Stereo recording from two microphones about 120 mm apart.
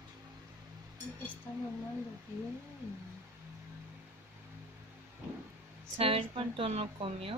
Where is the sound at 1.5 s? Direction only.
15° left (ahead or behind).